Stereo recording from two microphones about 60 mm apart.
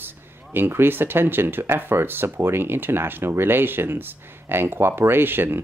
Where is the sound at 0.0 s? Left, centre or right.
Right.